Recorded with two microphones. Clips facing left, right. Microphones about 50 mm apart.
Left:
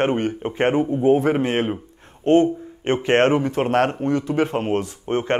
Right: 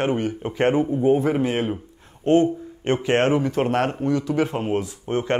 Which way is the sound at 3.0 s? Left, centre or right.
Left.